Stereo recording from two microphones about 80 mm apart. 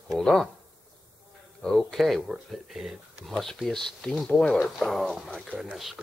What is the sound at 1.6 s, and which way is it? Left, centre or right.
Speech, centre.